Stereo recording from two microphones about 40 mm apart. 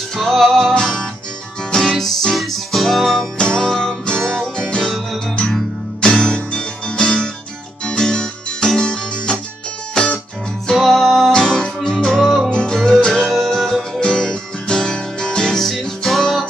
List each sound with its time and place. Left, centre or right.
0.1 s music: centre
3.3 s music: centre
5.9 s music: left
10.8 s music: centre
11.3 s music: centre
13.9 s music: left
15.7 s music: centre